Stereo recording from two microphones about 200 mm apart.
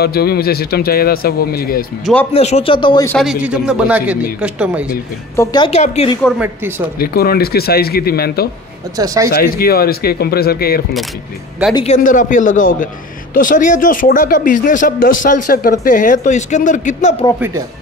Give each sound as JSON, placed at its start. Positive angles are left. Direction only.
{"t": 0.0, "sound": "speech", "side_deg": 50}
{"t": 2.3, "sound": "speech", "side_deg": 30}
{"t": 3.1, "sound": "a man's voice", "side_deg": 0}
{"t": 5.3, "sound": "a woman's voice", "side_deg": 15}
{"t": 5.7, "sound": "a man's voice", "side_deg": 30}
{"t": 6.2, "sound": "a man's voice", "side_deg": -5}
{"t": 7.0, "sound": "speech", "side_deg": 50}
{"t": 8.9, "sound": "speech", "side_deg": -15}
{"t": 9.3, "sound": "speech", "side_deg": 50}
{"t": 11.7, "sound": "a man's voice", "side_deg": 35}